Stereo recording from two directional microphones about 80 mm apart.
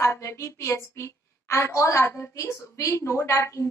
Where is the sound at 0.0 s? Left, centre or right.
Left.